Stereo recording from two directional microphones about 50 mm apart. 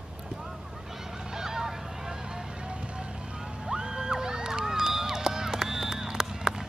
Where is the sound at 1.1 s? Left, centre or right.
Centre.